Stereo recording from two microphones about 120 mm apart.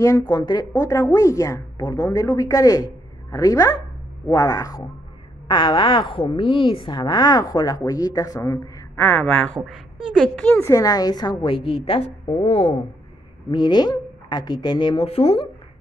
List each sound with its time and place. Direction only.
0.3 s a woman's voice: 35° left (ahead or behind)
9.0 s a woman's voice: 10° left (ahead or behind); by 11.3 s 35° left (ahead or behind)
11.4 s a woman's voice: 50° left (ahead or behind)
13.5 s speech: 40° left (ahead or behind); by 15.4 s 55° left (ahead or behind)